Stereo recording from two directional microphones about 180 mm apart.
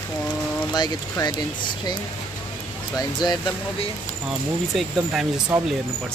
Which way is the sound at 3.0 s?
25° left (ahead or behind).